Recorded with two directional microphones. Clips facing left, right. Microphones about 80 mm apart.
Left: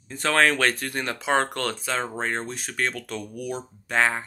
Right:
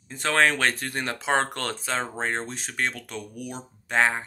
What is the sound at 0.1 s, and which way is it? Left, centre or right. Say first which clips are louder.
Speech: left 1 dB; right.